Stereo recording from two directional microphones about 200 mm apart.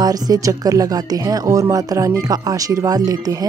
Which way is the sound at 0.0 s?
20° right (ahead or behind).